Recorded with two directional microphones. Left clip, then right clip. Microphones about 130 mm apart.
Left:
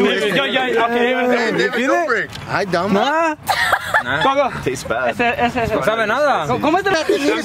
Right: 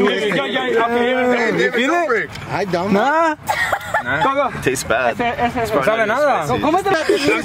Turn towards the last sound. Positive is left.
turn(degrees=40)  # may be behind; listen again after turning